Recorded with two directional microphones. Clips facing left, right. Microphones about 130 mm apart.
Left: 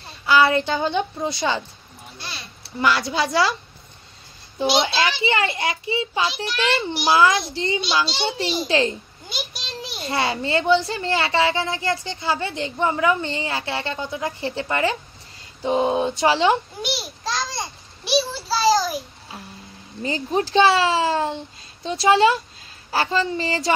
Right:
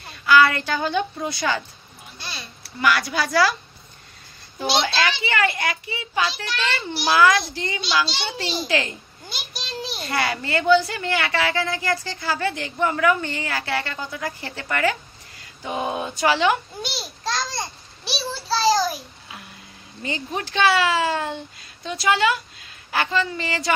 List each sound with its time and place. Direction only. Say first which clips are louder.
0.0 s a woman's voice: right 1 dB; 25° left (ahead or behind)
2.1 s a sound: even; centre (ahead or behind)
2.6 s a woman's voice: left 1 dB; 25° left (ahead or behind)
4.6 s a woman's voice: left 2 dB; 25° left (ahead or behind)
9.8 s a sound: right 3 dB; 25° right (ahead or behind)
10.0 s a woman's voice: left 3 dB; 25° left (ahead or behind)
16.9 s a sound: even; centre (ahead or behind)
18.2 s child singing: left 1 dB; centre (ahead or behind)
20.0 s a woman's voice: left 6 dB; 30° left (ahead or behind)